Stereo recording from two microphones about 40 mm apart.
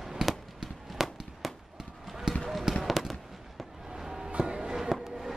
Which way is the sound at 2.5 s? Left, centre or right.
Centre.